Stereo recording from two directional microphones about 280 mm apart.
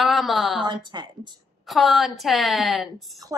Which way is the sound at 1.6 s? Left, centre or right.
Centre.